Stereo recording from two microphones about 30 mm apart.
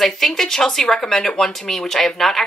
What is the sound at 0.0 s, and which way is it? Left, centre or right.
Speech, centre.